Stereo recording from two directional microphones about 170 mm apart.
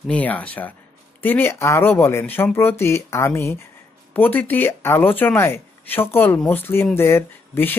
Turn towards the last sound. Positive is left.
turn(degrees=10)  # may be behind; listen again after turning